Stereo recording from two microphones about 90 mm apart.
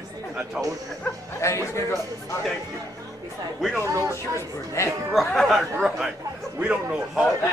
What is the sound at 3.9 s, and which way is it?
Speech, 35° right (ahead or behind).